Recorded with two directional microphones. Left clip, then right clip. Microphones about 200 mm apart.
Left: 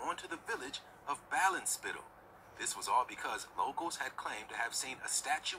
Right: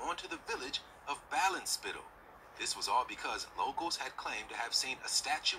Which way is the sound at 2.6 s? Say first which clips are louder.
Even; 15° left (ahead or behind).